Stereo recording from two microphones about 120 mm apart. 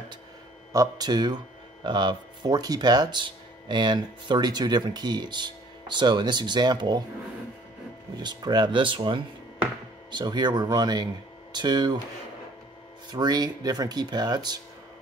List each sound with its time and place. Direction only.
0.7 s speech: 35° right (ahead or behind)
8.2 s speech: 35° right (ahead or behind)
13.1 s speech: 35° right (ahead or behind)